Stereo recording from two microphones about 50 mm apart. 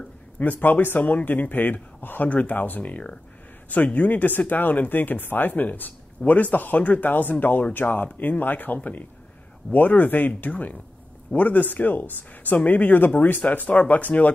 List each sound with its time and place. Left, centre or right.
0.4 s speech: left